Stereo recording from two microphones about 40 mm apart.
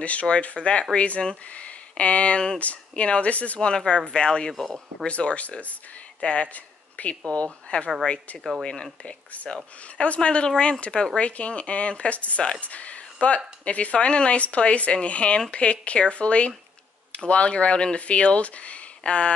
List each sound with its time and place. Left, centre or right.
0.0 s a woman's voice: left
3.6 s a woman's voice: left
9.0 s a woman's voice: left